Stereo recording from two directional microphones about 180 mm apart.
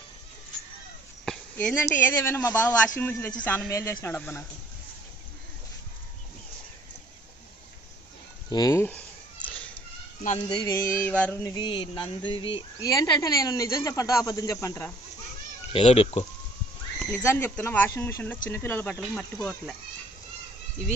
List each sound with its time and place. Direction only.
1.2 s a sound: 5° left (ahead or behind)
1.9 s speech: 15° left (ahead or behind)
8.5 s speech: 20° left (ahead or behind)
10.5 s speech: 20° left (ahead or behind)
11.5 s speech: 25° left (ahead or behind)
15.7 s speech: 35° left (ahead or behind)
17.1 s speech: 15° left (ahead or behind)